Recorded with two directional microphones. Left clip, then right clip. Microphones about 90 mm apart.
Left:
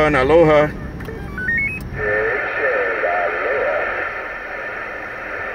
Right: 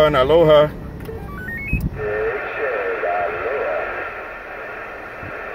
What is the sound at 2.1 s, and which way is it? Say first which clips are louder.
Radio: left 4 dB; 15° right (ahead or behind).